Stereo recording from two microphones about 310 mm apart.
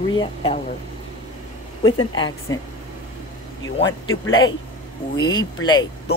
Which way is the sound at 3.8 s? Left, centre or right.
Left.